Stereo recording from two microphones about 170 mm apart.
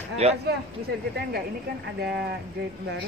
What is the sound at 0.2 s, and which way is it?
Speech, 40° right (ahead or behind).